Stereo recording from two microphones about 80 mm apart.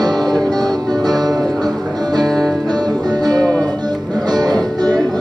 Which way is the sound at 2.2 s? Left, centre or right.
Centre.